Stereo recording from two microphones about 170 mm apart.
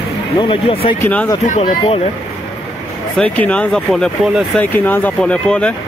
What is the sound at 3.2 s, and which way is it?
Speech, 5° left (ahead or behind).